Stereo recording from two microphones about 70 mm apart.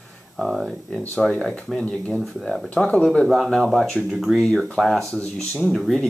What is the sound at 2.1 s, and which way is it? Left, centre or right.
Speech, centre.